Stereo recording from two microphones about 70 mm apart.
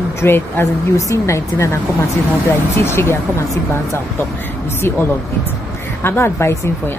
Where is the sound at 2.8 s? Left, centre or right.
Left.